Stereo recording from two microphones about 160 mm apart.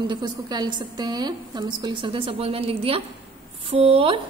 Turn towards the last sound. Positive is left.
turn(degrees=-35)  # may be behind; listen again after turning